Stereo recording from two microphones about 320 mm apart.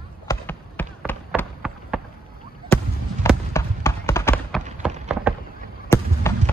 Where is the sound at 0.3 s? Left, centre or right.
Centre.